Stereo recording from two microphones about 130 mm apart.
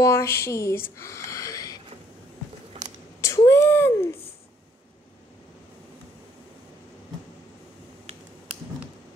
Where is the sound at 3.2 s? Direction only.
20° left (ahead or behind).